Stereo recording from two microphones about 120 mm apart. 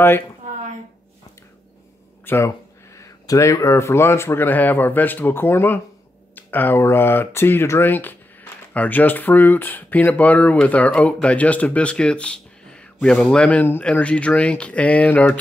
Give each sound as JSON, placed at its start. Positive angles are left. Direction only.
{"t": 2.2, "sound": "speech", "side_deg": 25}